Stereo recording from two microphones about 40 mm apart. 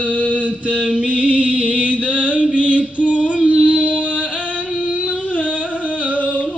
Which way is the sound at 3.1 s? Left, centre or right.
Right.